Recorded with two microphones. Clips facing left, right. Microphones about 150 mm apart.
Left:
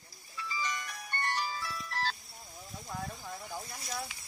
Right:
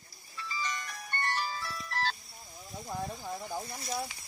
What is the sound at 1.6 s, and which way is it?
Music, centre (ahead or behind).